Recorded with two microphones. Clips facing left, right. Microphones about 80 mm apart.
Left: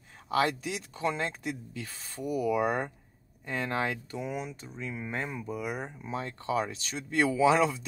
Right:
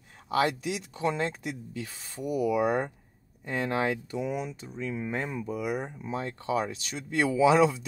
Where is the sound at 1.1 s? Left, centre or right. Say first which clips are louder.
Right 2 dB; right.